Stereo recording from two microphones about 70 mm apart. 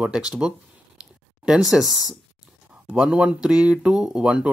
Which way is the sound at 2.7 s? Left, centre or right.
Centre.